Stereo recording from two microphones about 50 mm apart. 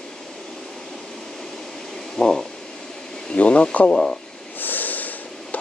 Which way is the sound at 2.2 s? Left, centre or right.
Centre.